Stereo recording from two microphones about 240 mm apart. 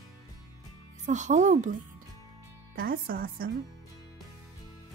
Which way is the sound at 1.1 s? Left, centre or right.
Right.